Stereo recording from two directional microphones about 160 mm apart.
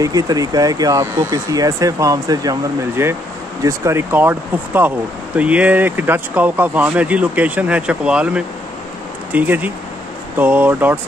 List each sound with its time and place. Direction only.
0.0 s speech: 20° right (ahead or behind)